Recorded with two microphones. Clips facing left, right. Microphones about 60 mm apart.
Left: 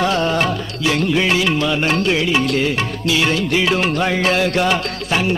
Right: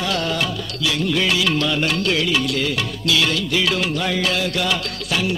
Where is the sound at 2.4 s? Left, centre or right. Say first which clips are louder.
Left 4 dB; left.